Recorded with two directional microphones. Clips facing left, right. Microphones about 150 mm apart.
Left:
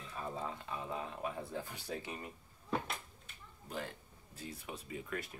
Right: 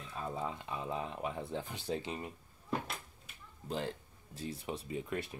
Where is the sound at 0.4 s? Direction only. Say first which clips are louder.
Right 3 dB; 20° right (ahead or behind).